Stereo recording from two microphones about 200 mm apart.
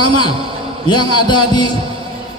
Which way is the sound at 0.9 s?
20° left (ahead or behind).